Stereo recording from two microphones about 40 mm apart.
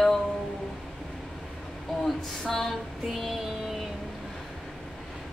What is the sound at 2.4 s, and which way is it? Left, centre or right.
A woman's voice, centre.